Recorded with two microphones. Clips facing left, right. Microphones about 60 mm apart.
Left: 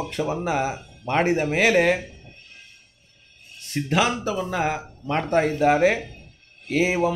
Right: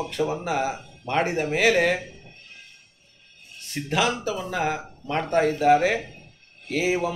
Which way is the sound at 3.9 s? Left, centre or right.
Left.